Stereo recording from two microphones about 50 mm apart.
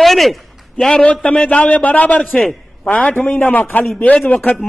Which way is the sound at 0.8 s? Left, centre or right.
Left.